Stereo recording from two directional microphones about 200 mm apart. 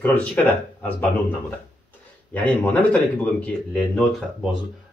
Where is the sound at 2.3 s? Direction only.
10° left (ahead or behind).